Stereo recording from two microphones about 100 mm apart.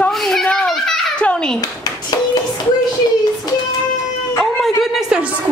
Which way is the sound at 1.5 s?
40° left (ahead or behind).